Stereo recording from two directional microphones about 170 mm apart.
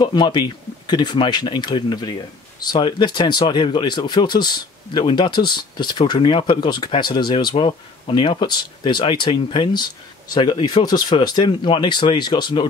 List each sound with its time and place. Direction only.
0.0 s speech: 25° left (ahead or behind)